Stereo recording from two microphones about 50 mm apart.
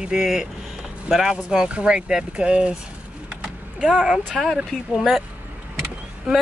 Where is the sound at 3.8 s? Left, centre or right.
Centre.